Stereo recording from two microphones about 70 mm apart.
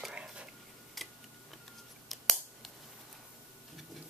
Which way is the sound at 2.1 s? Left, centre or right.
Centre.